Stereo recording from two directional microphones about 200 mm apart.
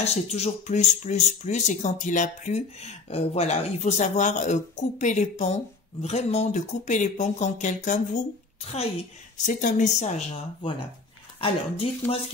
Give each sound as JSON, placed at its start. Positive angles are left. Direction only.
{"t": 0.0, "sound": "speech", "side_deg": 30}